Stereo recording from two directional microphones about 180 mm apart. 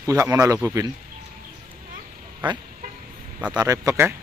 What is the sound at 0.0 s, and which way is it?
Speech, 15° right (ahead or behind).